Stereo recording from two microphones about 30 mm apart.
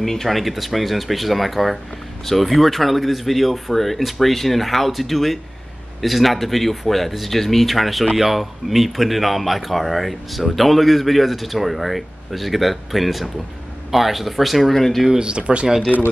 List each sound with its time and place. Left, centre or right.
0.0 s a man's voice: centre
14.7 s speech: centre
15.1 s speech: right